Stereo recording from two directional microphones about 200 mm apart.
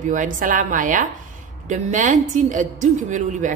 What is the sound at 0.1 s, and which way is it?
A woman's voice, 40° right (ahead or behind).